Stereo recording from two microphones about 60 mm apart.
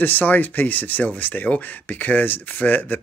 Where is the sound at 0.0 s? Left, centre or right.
Left.